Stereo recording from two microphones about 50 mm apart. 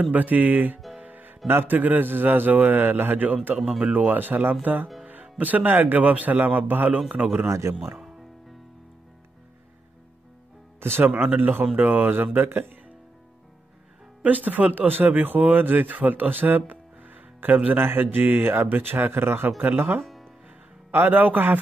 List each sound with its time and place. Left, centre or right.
0.1 s speech: right
0.9 s music: right
1.5 s speech: right
3.5 s speech: centre
3.9 s speech: right
7.4 s speech: right
11.0 s speech: right
14.2 s speech: right